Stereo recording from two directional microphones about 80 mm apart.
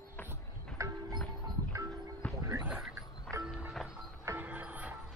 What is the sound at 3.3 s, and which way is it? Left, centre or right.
Music, centre.